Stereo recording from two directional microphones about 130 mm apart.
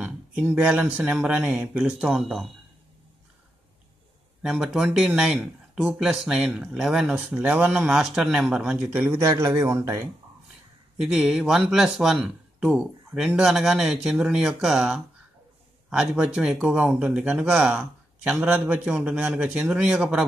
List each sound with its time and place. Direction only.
0.0 s speech: 10° right (ahead or behind)
4.4 s speech: 5° right (ahead or behind); by 10.0 s 20° right (ahead or behind)
11.0 s speech: 5° right (ahead or behind)